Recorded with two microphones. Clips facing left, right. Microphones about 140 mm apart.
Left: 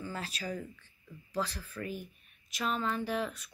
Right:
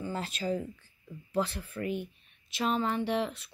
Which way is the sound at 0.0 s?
25° right (ahead or behind).